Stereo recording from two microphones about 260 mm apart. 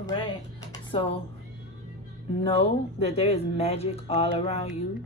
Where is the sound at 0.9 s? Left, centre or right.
Left.